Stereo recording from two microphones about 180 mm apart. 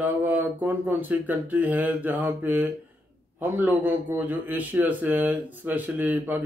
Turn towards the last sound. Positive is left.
turn(degrees=-10)  # may be behind; listen again after turning